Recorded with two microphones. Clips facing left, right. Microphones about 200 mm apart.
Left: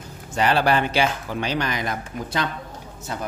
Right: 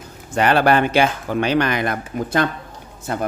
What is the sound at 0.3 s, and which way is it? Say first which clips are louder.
Speech: right 4 dB; 55° right (ahead or behind).